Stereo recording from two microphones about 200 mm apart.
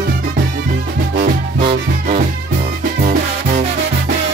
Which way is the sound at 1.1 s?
50° right (ahead or behind).